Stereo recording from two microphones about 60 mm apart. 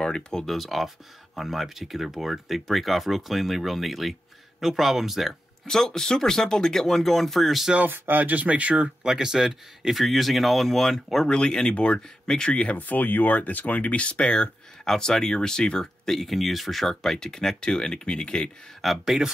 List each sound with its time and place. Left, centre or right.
0.0 s speech: centre
0.6 s speech: centre
5.7 s speech: centre
7.7 s speech: right; by 11.2 s centre
11.2 s speech: centre
12.7 s speech: left
18.8 s speech: centre